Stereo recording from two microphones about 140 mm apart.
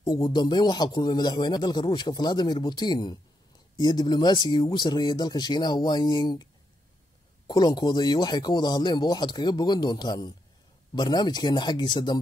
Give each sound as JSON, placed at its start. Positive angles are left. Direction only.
{"t": 0.0, "sound": "a man's voice", "side_deg": 25}
{"t": 7.4, "sound": "a man's voice", "side_deg": 30}